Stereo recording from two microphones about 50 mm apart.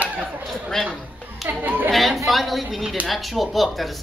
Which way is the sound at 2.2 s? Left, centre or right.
Centre.